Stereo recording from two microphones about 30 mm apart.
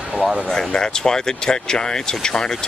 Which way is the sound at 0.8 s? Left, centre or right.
Left.